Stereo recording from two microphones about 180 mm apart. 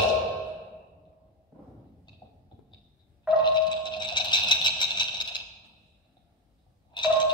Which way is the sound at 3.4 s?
25° left (ahead or behind).